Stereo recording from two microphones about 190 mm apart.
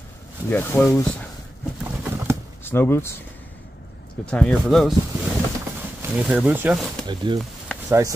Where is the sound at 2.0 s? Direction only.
15° right (ahead or behind).